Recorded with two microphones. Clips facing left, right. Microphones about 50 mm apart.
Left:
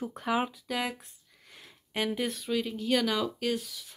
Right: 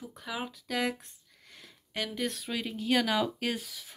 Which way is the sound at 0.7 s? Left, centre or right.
Centre.